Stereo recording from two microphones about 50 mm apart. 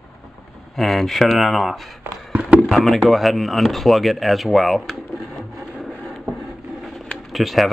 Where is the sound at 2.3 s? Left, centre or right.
Right.